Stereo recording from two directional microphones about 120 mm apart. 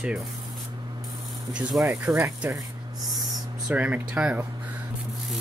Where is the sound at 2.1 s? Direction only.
15° right (ahead or behind).